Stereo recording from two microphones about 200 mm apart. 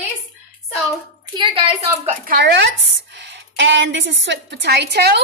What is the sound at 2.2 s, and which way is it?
A woman's voice, 55° right (ahead or behind).